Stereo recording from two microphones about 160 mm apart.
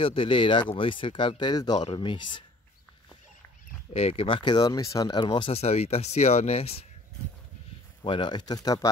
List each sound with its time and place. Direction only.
0.0 s speech: 35° left (ahead or behind)
3.9 s speech: 35° left (ahead or behind)
8.0 s speech: 30° left (ahead or behind)